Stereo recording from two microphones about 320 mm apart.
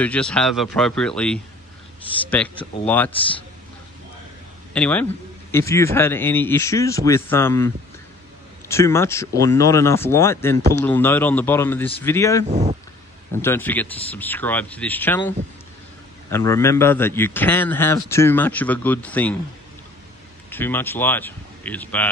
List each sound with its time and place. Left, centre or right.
0.0 s speech: centre
4.7 s speech: centre
12.4 s speech: right
13.4 s speech: centre
20.4 s speech: centre